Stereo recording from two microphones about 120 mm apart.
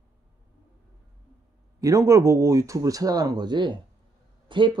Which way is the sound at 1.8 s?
25° right (ahead or behind).